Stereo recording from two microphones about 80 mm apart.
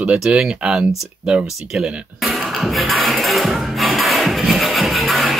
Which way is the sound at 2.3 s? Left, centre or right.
Centre.